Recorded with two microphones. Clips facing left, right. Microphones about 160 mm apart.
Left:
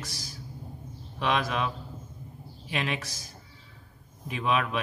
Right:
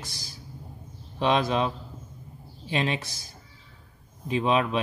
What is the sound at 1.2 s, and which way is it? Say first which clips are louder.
Speech: right 4 dB; 30° right (ahead or behind).